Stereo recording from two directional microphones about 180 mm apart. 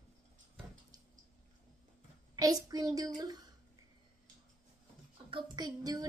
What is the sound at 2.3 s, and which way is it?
Speech, 20° right (ahead or behind).